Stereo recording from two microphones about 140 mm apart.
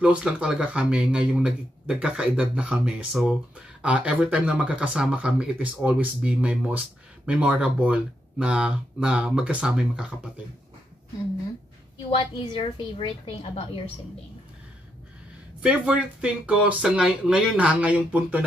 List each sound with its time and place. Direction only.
0.0 s speech: 5° right (ahead or behind)
12.1 s a woman's voice: 40° left (ahead or behind)
15.6 s speech: 5° right (ahead or behind)